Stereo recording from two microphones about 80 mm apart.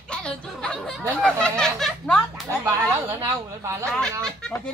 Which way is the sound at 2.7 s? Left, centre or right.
Right.